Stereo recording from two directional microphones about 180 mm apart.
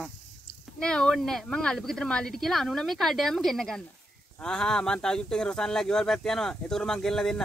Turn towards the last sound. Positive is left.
turn(degrees=0)  # may be behind; listen again after turning